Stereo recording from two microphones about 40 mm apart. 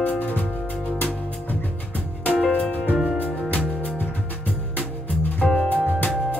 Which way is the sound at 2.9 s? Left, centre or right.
Right.